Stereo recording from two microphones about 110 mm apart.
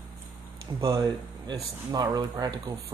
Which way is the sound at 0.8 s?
35° right (ahead or behind).